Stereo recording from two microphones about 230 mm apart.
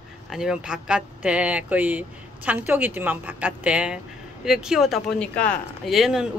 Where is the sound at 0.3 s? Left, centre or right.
Centre.